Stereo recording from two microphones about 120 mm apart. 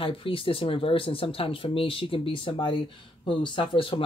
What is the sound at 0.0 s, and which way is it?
Speech, 50° left (ahead or behind).